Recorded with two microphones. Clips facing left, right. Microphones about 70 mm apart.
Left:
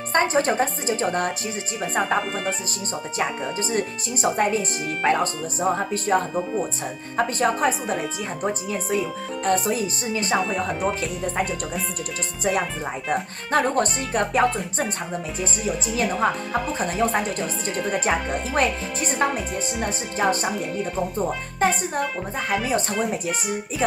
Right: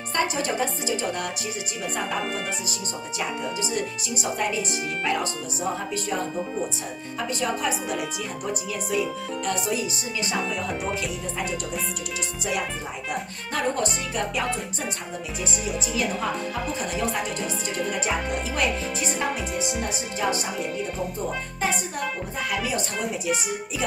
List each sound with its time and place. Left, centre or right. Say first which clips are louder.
0.1 s speech: left 5 dB; left
3.2 s speech: left 3 dB; left
7.2 s music: left 6 dB; left
8.5 s speech: left 4 dB; left
10.4 s speech: left 4 dB; centre
13.5 s music: left 5 dB; left
16.9 s speech: left 6 dB; left
19.8 s music: left 3 dB; left
21.5 s speech: left 7 dB; left